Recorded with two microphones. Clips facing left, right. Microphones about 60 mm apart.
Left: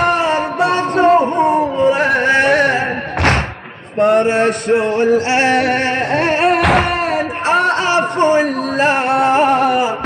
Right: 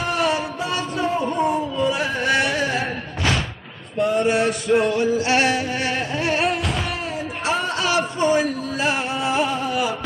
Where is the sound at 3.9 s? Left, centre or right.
Left.